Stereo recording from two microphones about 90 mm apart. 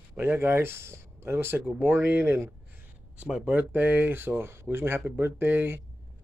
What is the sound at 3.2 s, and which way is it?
Speech, 15° right (ahead or behind).